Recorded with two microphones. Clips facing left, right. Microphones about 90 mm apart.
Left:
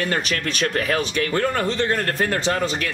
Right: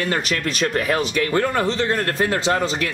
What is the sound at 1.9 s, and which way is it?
Speech, 5° right (ahead or behind).